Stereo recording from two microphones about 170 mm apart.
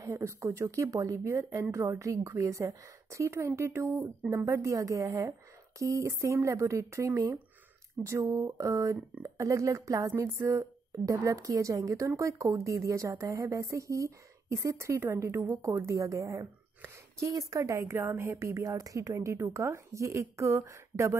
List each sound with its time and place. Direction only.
0.0 s speech: 15° right (ahead or behind)